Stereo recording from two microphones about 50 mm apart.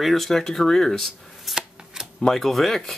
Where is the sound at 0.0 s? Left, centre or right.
Centre.